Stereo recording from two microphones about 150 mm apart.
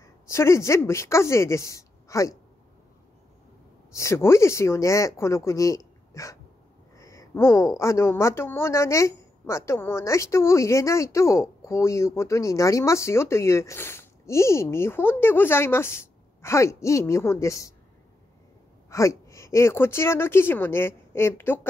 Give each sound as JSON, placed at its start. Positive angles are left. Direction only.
{"t": 0.3, "sound": "a woman's voice", "side_deg": 20}
{"t": 3.9, "sound": "a woman's voice", "side_deg": 20}
{"t": 18.9, "sound": "a woman's voice", "side_deg": 20}